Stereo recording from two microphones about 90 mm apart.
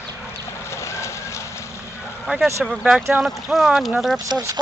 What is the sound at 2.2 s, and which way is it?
Speech, centre (ahead or behind).